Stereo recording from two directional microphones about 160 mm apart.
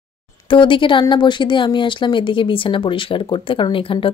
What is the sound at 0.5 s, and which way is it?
Speech, 30° left (ahead or behind).